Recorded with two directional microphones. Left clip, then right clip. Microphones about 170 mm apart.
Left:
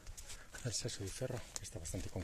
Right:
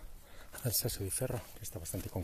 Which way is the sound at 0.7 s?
50° right (ahead or behind).